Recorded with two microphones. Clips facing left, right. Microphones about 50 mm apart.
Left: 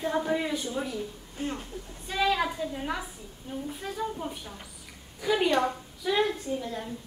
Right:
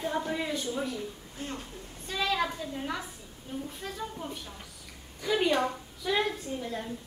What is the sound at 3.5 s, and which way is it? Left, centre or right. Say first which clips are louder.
A woman's voice: left 2 dB; centre.